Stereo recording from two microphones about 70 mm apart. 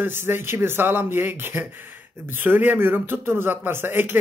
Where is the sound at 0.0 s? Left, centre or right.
Right.